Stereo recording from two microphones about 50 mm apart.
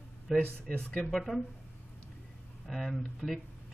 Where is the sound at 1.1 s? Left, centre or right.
Centre.